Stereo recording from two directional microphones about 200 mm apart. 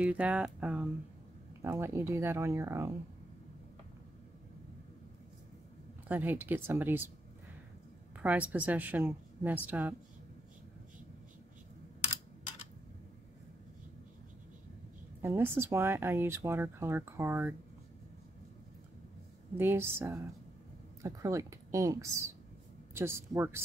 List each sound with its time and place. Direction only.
0.0 s speech: 5° right (ahead or behind)
6.0 s speech: 10° right (ahead or behind)
8.2 s speech: 5° right (ahead or behind)
15.2 s speech: 10° right (ahead or behind)
19.5 s speech: 10° right (ahead or behind)